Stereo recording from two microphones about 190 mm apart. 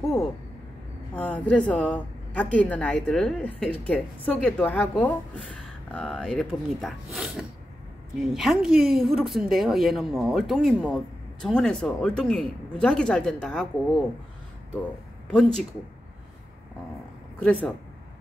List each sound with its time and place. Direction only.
1.1 s a woman's voice: 5° left (ahead or behind)
15.2 s a woman's voice: 5° left (ahead or behind)
17.4 s a woman's voice: 5° left (ahead or behind)